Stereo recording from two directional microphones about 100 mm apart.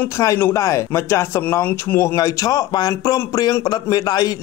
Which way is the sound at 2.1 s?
35° left (ahead or behind).